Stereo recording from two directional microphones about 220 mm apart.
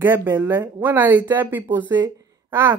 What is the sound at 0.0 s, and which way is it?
Speech, 10° right (ahead or behind).